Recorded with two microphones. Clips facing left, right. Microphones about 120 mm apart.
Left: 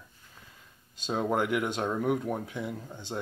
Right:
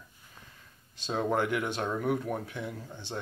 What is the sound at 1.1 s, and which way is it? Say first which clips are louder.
Speech: left 1 dB; 15° left (ahead or behind).